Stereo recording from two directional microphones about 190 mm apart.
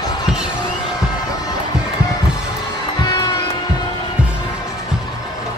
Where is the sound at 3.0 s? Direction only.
25° left (ahead or behind).